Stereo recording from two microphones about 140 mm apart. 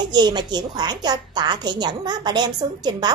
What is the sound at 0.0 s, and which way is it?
Speech, 30° right (ahead or behind).